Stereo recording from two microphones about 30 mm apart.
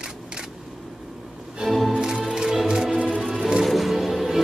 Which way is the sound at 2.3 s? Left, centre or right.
Right.